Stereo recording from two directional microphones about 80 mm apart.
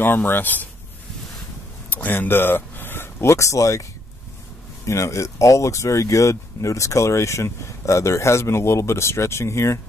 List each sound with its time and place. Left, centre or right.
0.0 s speech: left
1.9 s speech: left
4.8 s speech: left